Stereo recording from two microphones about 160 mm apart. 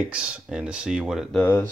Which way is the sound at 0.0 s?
5° right (ahead or behind).